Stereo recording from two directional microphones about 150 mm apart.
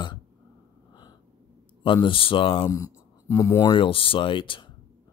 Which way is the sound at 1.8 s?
35° left (ahead or behind).